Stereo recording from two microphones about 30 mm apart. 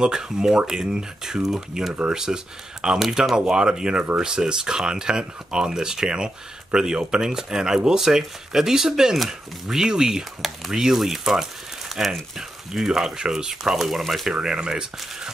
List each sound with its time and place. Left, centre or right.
0.0 s speech: right
9.8 s speech: centre
13.8 s speech: centre
14.3 s speech: right